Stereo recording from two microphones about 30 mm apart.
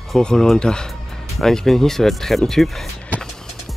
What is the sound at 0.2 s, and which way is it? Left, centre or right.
Speech, left.